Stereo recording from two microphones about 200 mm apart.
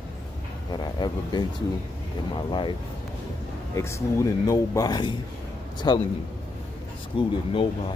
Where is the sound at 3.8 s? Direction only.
15° left (ahead or behind).